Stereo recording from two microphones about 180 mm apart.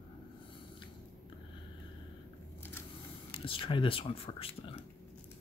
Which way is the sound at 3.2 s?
30° left (ahead or behind).